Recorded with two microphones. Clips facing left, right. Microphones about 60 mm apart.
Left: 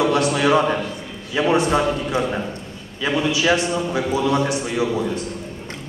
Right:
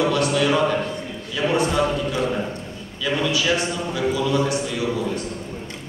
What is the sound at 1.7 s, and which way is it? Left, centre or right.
A man's voice, left.